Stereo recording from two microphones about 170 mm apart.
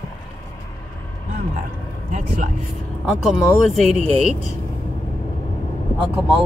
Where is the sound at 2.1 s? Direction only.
45° right (ahead or behind).